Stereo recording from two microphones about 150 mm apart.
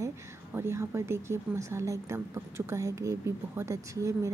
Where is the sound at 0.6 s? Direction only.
15° right (ahead or behind).